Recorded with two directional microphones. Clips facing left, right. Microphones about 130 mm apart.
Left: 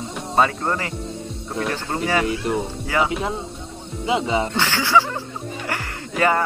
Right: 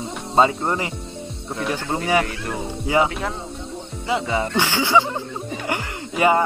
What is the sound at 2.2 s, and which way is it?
Speech, 20° left (ahead or behind).